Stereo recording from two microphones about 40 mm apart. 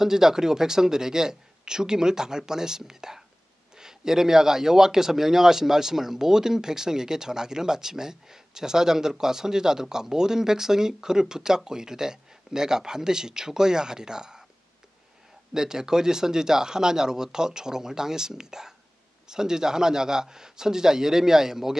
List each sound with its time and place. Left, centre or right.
0.0 s speech: centre
15.5 s speech: centre